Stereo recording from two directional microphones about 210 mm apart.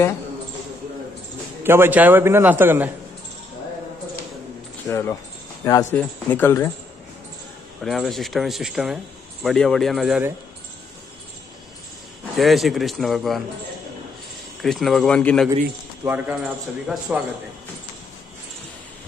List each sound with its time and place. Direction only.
1.6 s a man's voice: 10° right (ahead or behind)
4.8 s speech: 10° left (ahead or behind)
7.8 s a man's voice: centre (ahead or behind)
12.4 s a man's voice: centre (ahead or behind)
14.6 s a man's voice: centre (ahead or behind)
16.0 s a man's voice: 10° right (ahead or behind)